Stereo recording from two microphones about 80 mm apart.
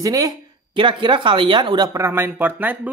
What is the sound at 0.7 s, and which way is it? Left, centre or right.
Speech, right.